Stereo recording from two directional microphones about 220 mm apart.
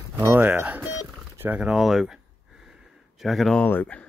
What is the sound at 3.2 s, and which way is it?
Speech, centre (ahead or behind).